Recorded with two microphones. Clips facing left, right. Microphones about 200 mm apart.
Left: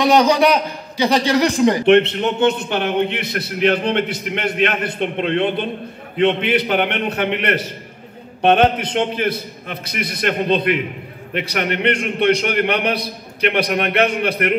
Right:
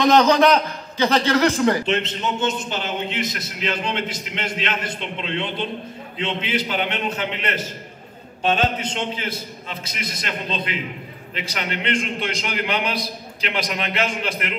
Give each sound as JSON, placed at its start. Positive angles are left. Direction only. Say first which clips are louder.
{"t": 0.0, "sound": "a man's voice", "louder": "left 1 dB", "side_deg": 10}
{"t": 1.9, "sound": "a man's voice", "louder": "left 10 dB", "side_deg": 60}